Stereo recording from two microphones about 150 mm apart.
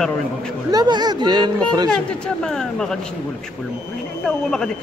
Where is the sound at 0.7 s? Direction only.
25° right (ahead or behind).